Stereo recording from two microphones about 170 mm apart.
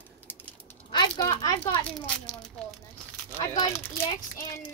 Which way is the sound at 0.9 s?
20° left (ahead or behind).